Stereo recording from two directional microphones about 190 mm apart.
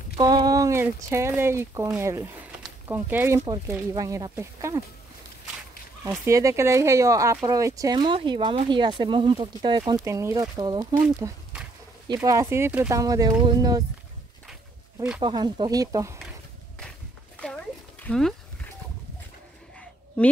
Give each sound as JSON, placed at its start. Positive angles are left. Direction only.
{"t": 0.2, "sound": "speech", "side_deg": -20}
{"t": 6.0, "sound": "speech", "side_deg": -15}
{"t": 15.1, "sound": "speech", "side_deg": -20}
{"t": 18.0, "sound": "speech", "side_deg": 5}